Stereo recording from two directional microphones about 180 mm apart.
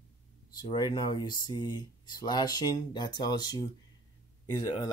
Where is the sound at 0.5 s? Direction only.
25° left (ahead or behind).